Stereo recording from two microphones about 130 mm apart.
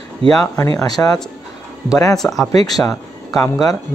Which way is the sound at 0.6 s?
25° left (ahead or behind).